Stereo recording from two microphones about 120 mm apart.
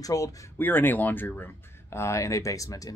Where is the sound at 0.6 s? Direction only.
15° left (ahead or behind).